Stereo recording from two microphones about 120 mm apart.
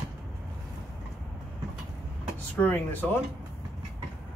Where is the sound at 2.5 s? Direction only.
15° left (ahead or behind).